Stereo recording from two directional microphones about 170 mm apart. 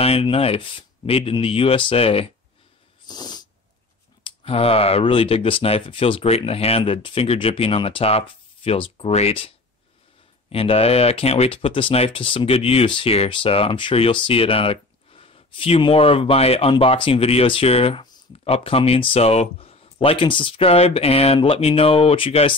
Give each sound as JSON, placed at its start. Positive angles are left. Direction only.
{"t": 0.0, "sound": "speech", "side_deg": 35}
{"t": 3.1, "sound": "snort", "side_deg": 25}
{"t": 4.2, "sound": "speech", "side_deg": 35}
{"t": 10.5, "sound": "speech", "side_deg": 35}